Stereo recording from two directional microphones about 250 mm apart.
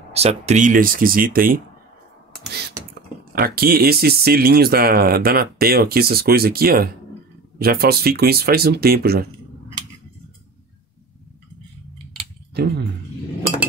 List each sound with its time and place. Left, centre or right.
0.1 s speech: right
2.9 s speech: right
12.6 s speech: right